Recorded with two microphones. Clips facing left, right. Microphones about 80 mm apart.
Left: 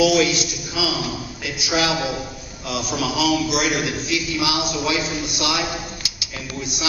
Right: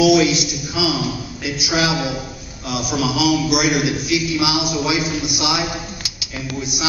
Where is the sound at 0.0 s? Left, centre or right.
Centre.